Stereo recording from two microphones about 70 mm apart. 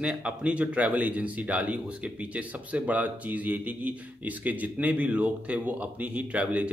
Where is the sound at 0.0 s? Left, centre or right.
Centre.